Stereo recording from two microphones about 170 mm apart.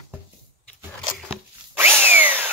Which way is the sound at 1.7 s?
10° right (ahead or behind).